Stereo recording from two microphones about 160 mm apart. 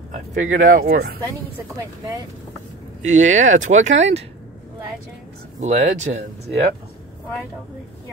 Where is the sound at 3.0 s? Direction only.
50° right (ahead or behind).